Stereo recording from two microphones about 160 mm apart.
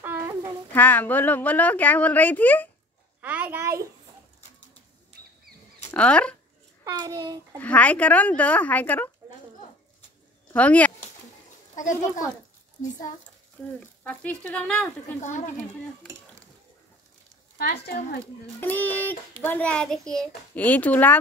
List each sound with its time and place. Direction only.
0.0 s a sound: 15° right (ahead or behind)
0.7 s a child's voice: 10° left (ahead or behind)
3.2 s a child's voice: 10° right (ahead or behind)
5.9 s a child's voice: 10° left (ahead or behind)
6.8 s a child's voice: 25° right (ahead or behind)
7.5 s a child's voice: 10° left (ahead or behind)
10.5 s speech: 10° left (ahead or behind)
11.7 s a child's voice: 50° left (ahead or behind)
13.7 s a child's voice: 10° left (ahead or behind)
15.1 s speech: 50° left (ahead or behind)
17.6 s speech: 85° left
18.6 s a child's voice: 10° left (ahead or behind)